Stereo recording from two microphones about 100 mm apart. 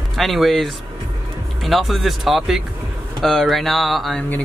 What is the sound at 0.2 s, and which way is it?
Speech, centre (ahead or behind).